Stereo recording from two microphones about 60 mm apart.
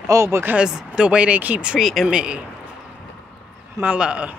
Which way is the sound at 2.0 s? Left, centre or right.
Centre.